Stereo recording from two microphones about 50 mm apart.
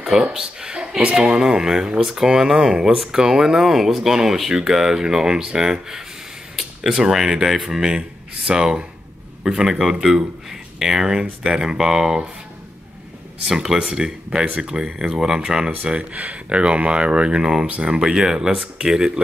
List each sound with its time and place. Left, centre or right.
0.1 s speech: centre
13.5 s speech: centre